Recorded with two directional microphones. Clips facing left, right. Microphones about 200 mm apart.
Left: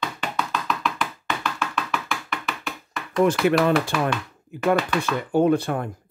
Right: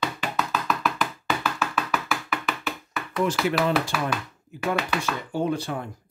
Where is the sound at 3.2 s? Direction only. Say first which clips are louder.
Left 5 dB; 55° left (ahead or behind).